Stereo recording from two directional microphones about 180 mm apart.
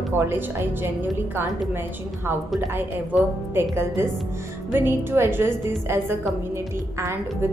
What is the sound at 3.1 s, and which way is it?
Speech, centre (ahead or behind).